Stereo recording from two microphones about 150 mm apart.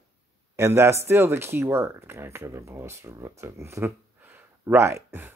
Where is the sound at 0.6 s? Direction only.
15° right (ahead or behind).